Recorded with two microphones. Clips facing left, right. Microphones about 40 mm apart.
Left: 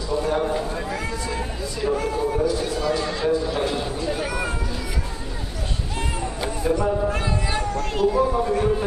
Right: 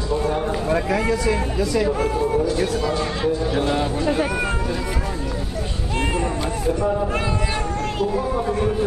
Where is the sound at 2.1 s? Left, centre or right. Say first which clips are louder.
Right 2 dB; centre.